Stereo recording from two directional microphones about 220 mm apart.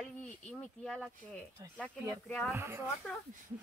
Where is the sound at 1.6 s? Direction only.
15° right (ahead or behind).